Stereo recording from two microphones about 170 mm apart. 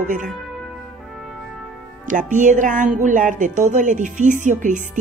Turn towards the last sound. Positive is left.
turn(degrees=-50)  # may be behind; listen again after turning